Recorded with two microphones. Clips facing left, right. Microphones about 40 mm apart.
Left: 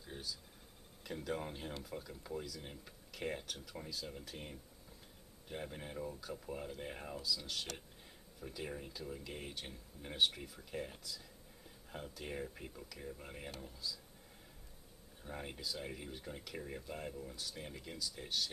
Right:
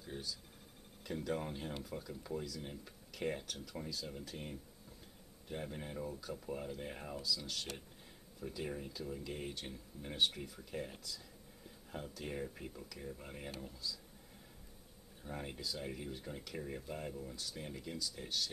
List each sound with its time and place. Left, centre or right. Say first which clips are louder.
0.0 s speech: right 2 dB; centre
15.2 s speech: right 1 dB; centre